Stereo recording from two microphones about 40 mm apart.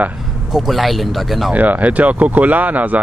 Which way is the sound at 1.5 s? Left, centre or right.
Right.